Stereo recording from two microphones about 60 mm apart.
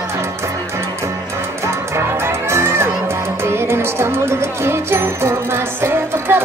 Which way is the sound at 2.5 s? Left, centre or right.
Right.